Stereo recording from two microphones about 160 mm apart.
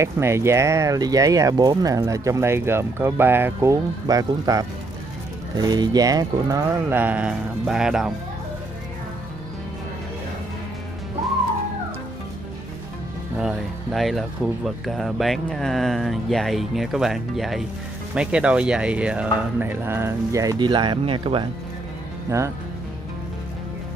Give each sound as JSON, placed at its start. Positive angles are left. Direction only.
{"t": 0.0, "sound": "speech", "side_deg": -15}
{"t": 6.9, "sound": "speech", "side_deg": -10}
{"t": 13.4, "sound": "speech", "side_deg": 0}